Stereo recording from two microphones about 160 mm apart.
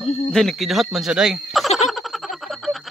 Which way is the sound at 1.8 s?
Centre (ahead or behind).